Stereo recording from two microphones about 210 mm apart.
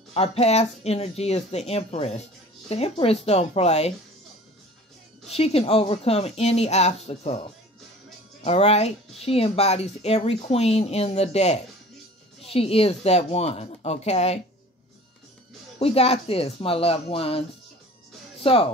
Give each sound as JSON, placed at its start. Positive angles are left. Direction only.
{"t": 0.1, "sound": "speech", "side_deg": 30}
{"t": 5.3, "sound": "speech", "side_deg": 30}
{"t": 8.5, "sound": "speech", "side_deg": 30}
{"t": 15.8, "sound": "speech", "side_deg": 30}